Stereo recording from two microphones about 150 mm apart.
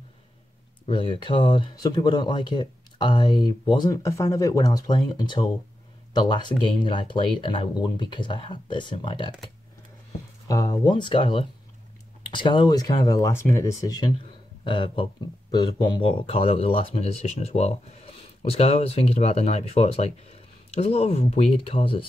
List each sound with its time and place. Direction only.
0.8 s speech: 35° left (ahead or behind)
10.5 s speech: 25° left (ahead or behind)
14.6 s speech: 35° left (ahead or behind)